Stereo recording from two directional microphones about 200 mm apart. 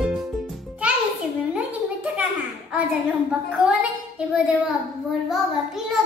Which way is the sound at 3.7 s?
5° right (ahead or behind).